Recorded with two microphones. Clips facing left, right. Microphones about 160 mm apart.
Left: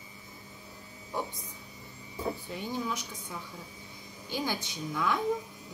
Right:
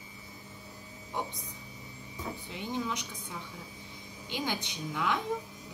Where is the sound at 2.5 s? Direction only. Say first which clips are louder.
Left 1 dB; 20° right (ahead or behind).